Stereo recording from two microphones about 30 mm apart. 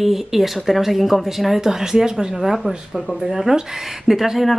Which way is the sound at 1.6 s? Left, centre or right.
Centre.